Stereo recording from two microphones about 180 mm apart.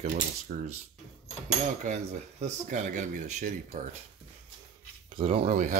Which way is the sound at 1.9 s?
45° right (ahead or behind).